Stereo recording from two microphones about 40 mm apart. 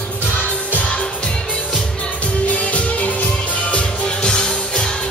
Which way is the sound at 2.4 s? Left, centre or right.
Left.